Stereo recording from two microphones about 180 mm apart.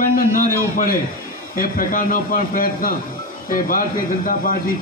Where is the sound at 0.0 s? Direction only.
50° left (ahead or behind).